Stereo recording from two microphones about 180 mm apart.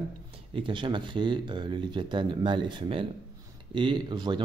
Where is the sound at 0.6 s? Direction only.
25° right (ahead or behind).